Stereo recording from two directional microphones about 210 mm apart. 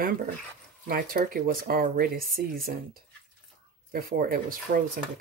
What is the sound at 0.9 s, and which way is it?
Speech, 45° right (ahead or behind).